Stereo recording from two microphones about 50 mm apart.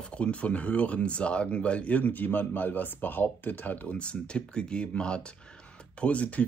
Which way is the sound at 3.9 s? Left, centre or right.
Left.